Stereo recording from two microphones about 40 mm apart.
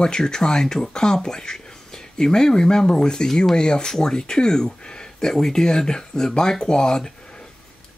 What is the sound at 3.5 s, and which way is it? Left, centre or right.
Speech, centre.